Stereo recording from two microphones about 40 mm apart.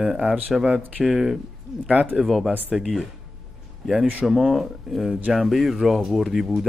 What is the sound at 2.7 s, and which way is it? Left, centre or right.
Speech, centre.